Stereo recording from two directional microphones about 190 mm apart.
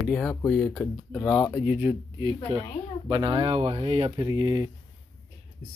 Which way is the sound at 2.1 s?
20° right (ahead or behind).